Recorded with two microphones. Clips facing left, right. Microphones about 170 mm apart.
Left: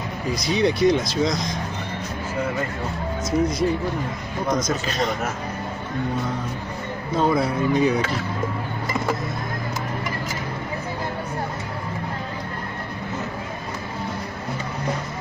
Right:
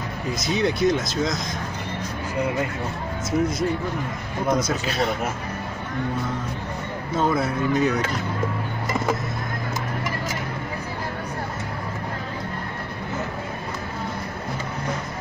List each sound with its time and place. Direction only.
0.6 s speech: centre (ahead or behind)
3.3 s speech: 25° right (ahead or behind)
4.5 s a man's voice: 10° right (ahead or behind)
7.2 s speech: centre (ahead or behind)